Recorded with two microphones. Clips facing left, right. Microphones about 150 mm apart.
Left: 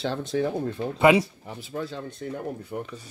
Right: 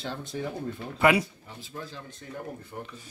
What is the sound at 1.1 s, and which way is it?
Speech, 20° left (ahead or behind).